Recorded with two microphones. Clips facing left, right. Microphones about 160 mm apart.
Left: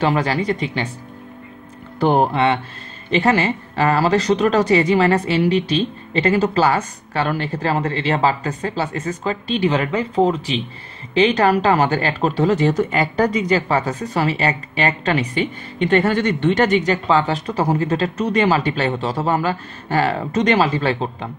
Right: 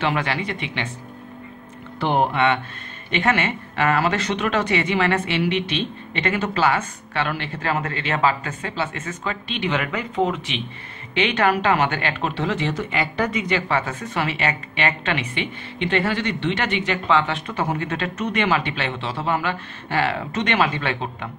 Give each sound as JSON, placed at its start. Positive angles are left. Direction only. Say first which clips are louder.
{"t": 0.0, "sound": "speech", "louder": "left 5 dB", "side_deg": 35}
{"t": 2.0, "sound": "speech", "louder": "left 4 dB", "side_deg": 40}